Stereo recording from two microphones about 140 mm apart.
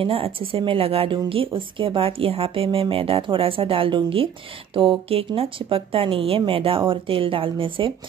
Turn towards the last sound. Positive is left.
turn(degrees=-40)  # may be behind; listen again after turning